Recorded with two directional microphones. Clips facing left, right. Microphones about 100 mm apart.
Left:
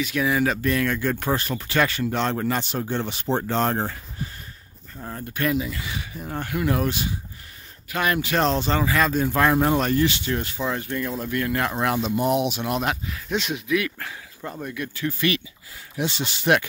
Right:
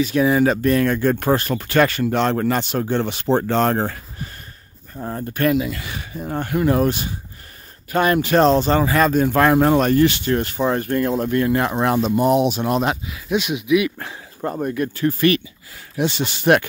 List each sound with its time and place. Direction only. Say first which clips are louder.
0.0 s speech: right 6 dB; 35° right (ahead or behind)
1.2 s speech: right 6 dB; 55° right (ahead or behind)
5.0 s speech: right 6 dB; 45° right (ahead or behind)
6.1 s speech: right 7 dB; 40° right (ahead or behind)
11.3 s speech: right 3 dB; 25° right (ahead or behind)
12.0 s speech: right 7 dB; 40° right (ahead or behind)
13.0 s speech: right 5 dB; 10° right (ahead or behind)
14.4 s speech: right 9 dB; 45° right (ahead or behind)
16.0 s speech: right 6 dB; 55° right (ahead or behind)